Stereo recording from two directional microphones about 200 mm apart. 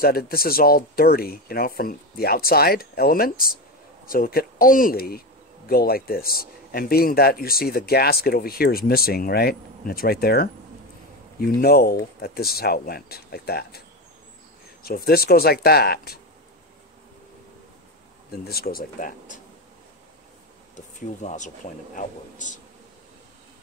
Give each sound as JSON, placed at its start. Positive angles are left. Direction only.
{"t": 0.0, "sound": "speech", "side_deg": 45}
{"t": 18.4, "sound": "speech", "side_deg": 50}
{"t": 20.7, "sound": "speech", "side_deg": 35}